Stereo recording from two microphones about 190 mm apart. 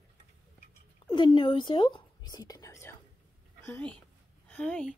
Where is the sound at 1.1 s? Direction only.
25° left (ahead or behind); by 4.9 s 5° left (ahead or behind).